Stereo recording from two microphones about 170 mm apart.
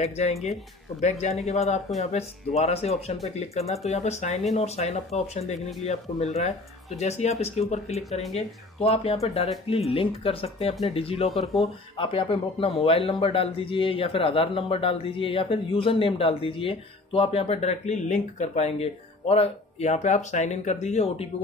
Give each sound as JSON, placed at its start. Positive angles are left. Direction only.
{"t": 0.0, "sound": "a man's voice", "side_deg": 40}
{"t": 7.9, "sound": "speech", "side_deg": 0}
{"t": 8.4, "sound": "a man's voice", "side_deg": 35}